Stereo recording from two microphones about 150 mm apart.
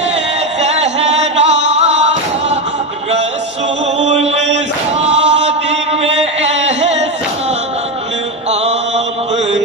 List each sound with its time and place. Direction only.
0.6 s music: 45° right (ahead or behind)
4.0 s mantra: 50° right (ahead or behind)
5.0 s chant: 45° right (ahead or behind)
8.5 s mantra: 45° right (ahead or behind)